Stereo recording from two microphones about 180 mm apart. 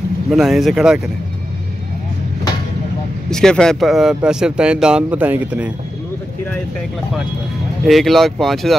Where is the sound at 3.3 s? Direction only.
5° left (ahead or behind).